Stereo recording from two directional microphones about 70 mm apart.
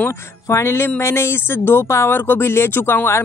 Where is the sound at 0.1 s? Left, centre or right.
Left.